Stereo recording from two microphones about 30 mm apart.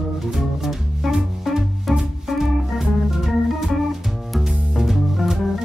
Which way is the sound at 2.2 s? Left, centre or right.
Centre.